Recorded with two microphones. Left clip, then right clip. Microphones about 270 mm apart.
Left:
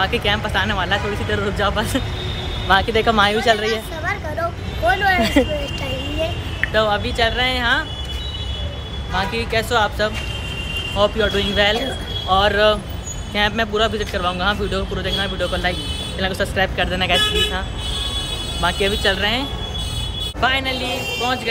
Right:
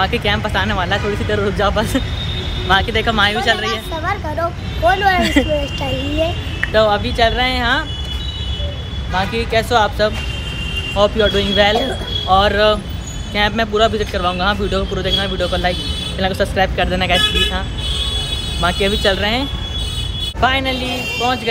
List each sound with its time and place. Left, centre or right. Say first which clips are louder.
0.0 s a man's voice: right 2 dB; centre
2.7 s speech: even; centre
4.0 s a woman's voice: right 3 dB; centre
6.7 s a woman's voice: right 5 dB; centre
9.1 s a woman's voice: right 3 dB; centre
18.6 s a man's voice: right 2 dB; centre